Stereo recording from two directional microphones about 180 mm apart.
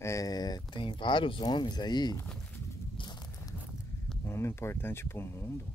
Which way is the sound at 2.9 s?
25° left (ahead or behind).